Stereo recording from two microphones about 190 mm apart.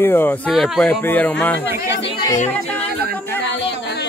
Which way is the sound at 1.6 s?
15° right (ahead or behind).